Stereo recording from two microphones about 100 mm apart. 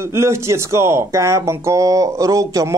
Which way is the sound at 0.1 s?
25° right (ahead or behind).